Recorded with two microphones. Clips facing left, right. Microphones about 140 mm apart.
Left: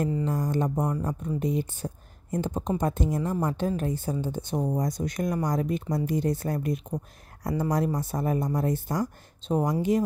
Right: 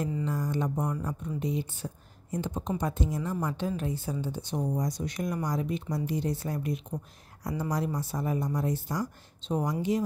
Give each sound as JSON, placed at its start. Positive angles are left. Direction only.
{"t": 0.1, "sound": "a woman's voice", "side_deg": 45}